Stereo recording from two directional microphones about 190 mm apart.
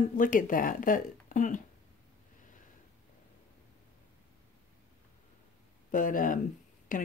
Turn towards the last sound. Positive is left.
turn(degrees=45)  # may be behind; listen again after turning